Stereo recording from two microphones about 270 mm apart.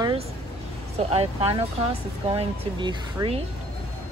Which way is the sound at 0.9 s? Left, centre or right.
Right.